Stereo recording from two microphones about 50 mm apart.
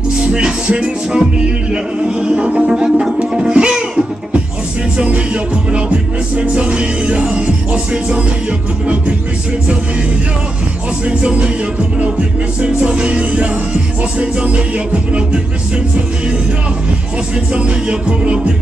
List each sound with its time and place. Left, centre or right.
0.3 s music: centre
2.7 s music: centre
6.4 s music: right
11.1 s music: right
12.8 s music: right
17.6 s music: right